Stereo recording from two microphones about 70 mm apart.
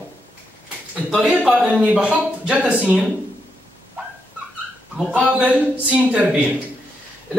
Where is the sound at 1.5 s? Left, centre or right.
Centre.